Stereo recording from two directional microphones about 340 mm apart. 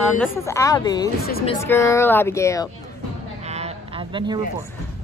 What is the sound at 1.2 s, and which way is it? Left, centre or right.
Speech, left.